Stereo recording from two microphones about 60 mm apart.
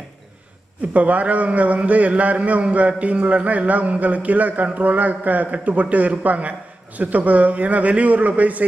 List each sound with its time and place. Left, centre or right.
0.9 s a man's voice: right